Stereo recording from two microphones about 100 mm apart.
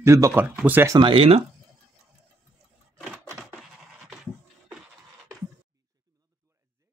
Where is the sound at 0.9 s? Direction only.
65° right (ahead or behind).